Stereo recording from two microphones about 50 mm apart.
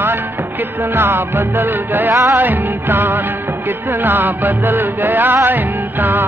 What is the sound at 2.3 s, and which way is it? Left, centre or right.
Music of bollywood, right.